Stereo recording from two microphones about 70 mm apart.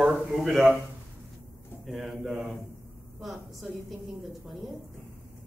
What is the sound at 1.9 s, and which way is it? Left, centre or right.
Speech, centre.